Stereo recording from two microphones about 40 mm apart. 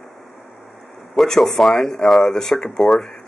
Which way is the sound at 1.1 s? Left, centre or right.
Centre.